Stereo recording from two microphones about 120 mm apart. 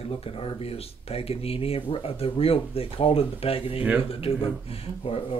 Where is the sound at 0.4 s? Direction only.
55° left (ahead or behind).